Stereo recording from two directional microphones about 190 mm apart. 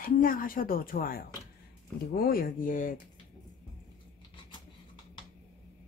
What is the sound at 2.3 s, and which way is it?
Speech, 45° left (ahead or behind).